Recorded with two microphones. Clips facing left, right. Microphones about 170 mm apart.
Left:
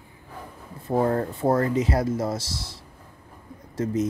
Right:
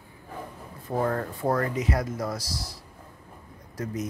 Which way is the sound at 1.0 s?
30° left (ahead or behind).